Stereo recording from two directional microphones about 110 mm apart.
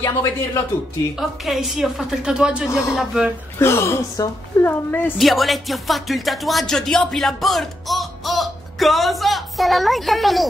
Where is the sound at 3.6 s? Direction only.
25° left (ahead or behind).